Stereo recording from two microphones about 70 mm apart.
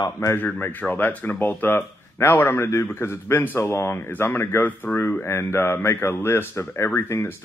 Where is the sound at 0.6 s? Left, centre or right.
Left.